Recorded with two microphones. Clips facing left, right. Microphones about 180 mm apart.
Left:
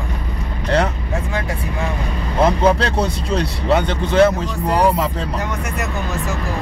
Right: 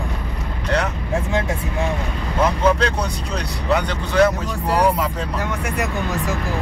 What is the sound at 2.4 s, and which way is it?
Speech, 30° left (ahead or behind).